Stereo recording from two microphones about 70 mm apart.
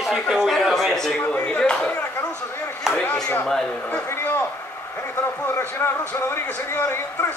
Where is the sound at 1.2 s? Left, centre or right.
Left.